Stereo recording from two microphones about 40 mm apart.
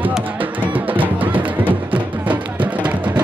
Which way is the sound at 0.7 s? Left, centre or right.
Right.